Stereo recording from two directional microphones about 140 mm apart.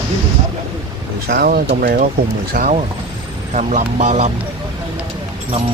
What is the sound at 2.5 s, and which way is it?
Speech, 65° right (ahead or behind).